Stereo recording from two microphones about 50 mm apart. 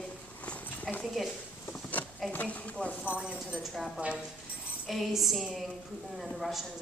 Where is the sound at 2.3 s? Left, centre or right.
Left.